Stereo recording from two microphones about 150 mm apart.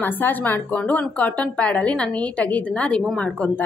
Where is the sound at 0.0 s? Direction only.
10° left (ahead or behind).